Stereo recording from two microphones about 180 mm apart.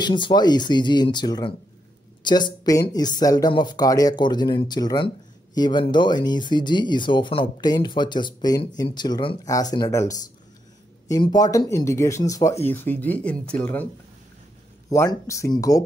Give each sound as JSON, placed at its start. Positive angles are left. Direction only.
{"t": 0.0, "sound": "speech", "side_deg": 25}
{"t": 15.0, "sound": "speech", "side_deg": 15}